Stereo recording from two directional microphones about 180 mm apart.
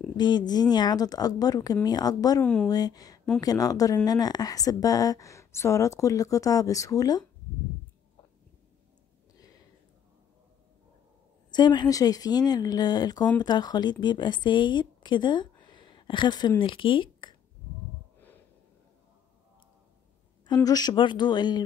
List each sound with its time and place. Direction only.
0.2 s a woman's voice: 25° left (ahead or behind)
2.4 s speech: 5° left (ahead or behind)
2.7 s a woman's voice: 20° left (ahead or behind)
11.5 s a woman's voice: 25° left (ahead or behind)
20.6 s a woman's voice: 20° left (ahead or behind)